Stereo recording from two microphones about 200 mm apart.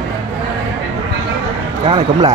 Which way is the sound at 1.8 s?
25° right (ahead or behind).